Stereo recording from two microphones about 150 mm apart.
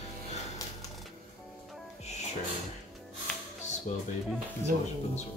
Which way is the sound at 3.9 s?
50° left (ahead or behind).